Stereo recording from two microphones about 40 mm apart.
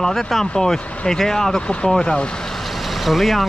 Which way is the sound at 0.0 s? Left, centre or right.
Centre.